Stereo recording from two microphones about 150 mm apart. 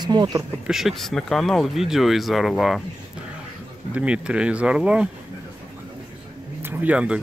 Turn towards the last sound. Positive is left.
turn(degrees=-5)  # may be behind; listen again after turning